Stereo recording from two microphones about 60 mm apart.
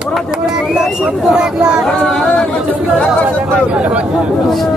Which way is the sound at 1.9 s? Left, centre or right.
Centre.